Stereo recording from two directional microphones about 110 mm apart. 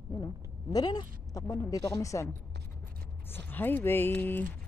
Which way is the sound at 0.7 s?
35° left (ahead or behind).